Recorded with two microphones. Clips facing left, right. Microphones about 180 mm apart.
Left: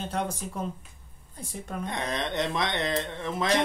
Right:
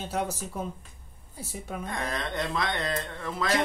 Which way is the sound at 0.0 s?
5° right (ahead or behind).